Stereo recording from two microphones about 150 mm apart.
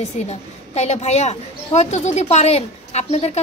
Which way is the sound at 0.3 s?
45° left (ahead or behind).